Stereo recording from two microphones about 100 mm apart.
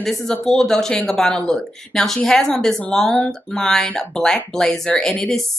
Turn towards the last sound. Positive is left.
turn(degrees=5)  # may be behind; listen again after turning